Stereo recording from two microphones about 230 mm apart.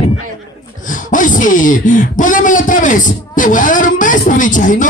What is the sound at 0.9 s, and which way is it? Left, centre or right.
Speech, left.